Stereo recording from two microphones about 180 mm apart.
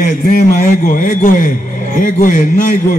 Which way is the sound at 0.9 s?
50° left (ahead or behind).